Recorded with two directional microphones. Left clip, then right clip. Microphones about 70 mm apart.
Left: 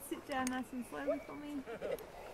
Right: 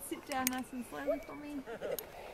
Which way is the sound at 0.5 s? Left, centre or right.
Centre.